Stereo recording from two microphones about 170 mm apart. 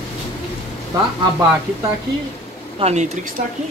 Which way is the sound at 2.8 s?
40° right (ahead or behind).